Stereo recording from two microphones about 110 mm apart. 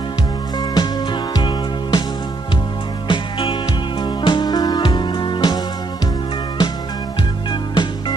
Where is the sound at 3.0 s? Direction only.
45° left (ahead or behind).